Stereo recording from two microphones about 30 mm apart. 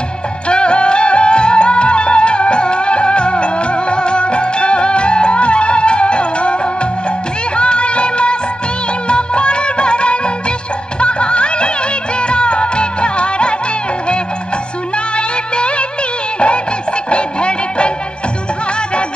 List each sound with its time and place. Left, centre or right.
0.5 s music: left
15.1 s music of bollywood: left